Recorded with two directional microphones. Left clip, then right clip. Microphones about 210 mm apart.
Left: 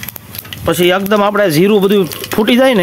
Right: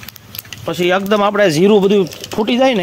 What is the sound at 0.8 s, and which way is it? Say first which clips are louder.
Speech: left 1 dB; 15° right (ahead or behind).